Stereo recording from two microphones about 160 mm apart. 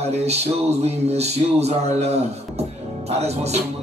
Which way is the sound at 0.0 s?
40° right (ahead or behind).